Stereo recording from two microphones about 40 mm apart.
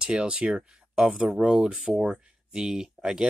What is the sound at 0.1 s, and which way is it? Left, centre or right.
Speech, right.